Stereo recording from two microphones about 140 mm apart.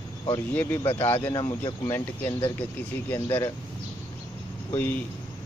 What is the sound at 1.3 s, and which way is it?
Speech, 30° left (ahead or behind).